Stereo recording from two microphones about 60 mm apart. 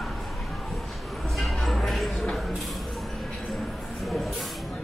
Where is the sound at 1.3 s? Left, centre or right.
Centre.